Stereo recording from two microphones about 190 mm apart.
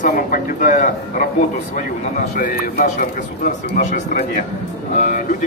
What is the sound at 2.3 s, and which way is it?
A man's voice, 45° left (ahead or behind).